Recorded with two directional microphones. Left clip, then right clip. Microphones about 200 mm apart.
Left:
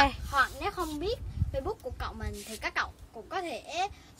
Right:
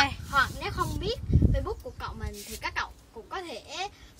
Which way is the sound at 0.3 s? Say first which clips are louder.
Right 1 dB; 60° left (ahead or behind).